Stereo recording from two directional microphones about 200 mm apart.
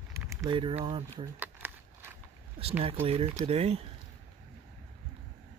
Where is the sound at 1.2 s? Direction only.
10° right (ahead or behind).